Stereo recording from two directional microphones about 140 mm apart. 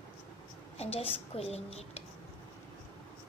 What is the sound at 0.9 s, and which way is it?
A woman's voice, 45° left (ahead or behind).